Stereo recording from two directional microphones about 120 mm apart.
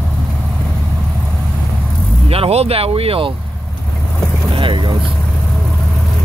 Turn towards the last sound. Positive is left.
turn(degrees=-45)  # may be behind; listen again after turning